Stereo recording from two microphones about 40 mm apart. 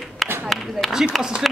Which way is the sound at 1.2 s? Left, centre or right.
Centre.